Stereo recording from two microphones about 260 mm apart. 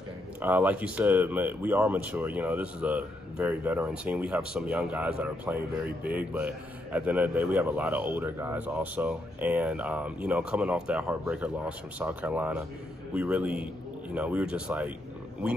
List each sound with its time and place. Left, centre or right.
0.4 s speech: centre